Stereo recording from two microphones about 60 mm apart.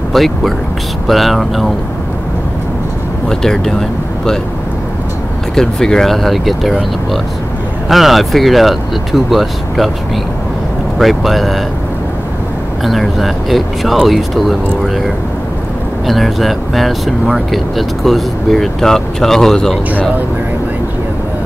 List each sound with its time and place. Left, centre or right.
0.1 s speech: centre
3.3 s speech: centre
5.5 s speech: centre
7.9 s speech: centre
11.0 s speech: centre
12.8 s speech: centre
16.1 s speech: centre